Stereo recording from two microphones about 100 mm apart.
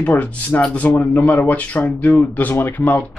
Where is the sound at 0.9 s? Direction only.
30° left (ahead or behind).